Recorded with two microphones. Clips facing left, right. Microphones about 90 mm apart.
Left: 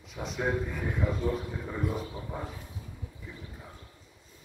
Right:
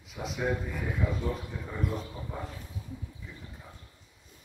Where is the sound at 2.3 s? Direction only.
10° left (ahead or behind).